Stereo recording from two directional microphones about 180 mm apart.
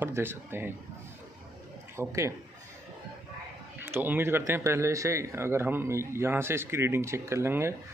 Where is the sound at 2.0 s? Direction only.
15° right (ahead or behind).